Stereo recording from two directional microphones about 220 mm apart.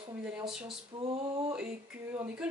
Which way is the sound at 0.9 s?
20° right (ahead or behind).